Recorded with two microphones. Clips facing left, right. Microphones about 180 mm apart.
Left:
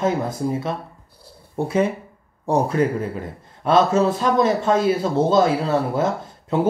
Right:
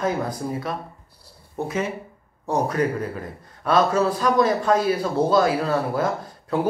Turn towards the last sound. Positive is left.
turn(degrees=25)  # may be behind; listen again after turning